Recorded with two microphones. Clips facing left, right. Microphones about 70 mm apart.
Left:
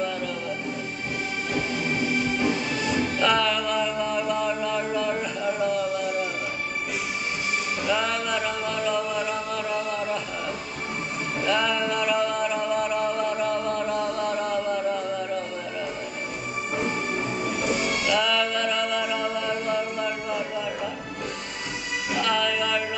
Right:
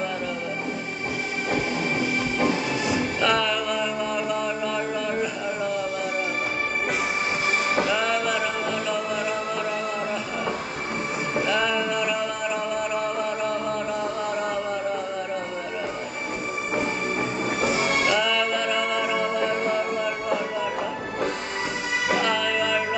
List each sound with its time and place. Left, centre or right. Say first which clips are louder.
3.2 s chant: left 1 dB; centre
7.9 s a sound: right 2 dB; centre
11.4 s music: left 1 dB; centre
17.6 s music: right 4 dB; right
18.1 s music: right 1 dB; centre
22.2 s music: right 1 dB; centre